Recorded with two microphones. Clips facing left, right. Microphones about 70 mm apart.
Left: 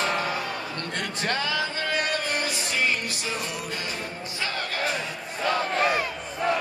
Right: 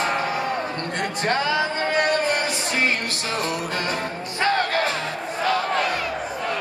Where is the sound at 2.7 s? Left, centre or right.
Right.